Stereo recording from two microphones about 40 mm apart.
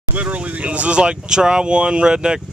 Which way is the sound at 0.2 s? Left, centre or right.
Right.